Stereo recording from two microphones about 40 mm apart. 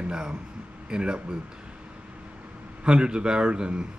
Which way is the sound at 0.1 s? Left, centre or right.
Centre.